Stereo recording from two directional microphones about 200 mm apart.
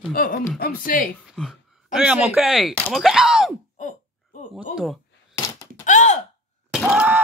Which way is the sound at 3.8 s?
40° left (ahead or behind).